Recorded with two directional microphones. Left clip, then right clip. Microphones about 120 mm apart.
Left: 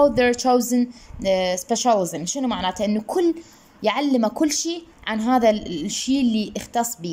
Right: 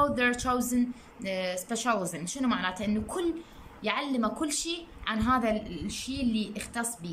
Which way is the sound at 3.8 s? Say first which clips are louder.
Left 9 dB; 70° left (ahead or behind).